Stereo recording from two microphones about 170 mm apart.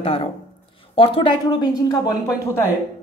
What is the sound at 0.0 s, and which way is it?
Speech, 35° left (ahead or behind).